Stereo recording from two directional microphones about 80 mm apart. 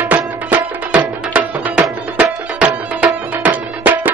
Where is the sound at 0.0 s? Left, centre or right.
Right.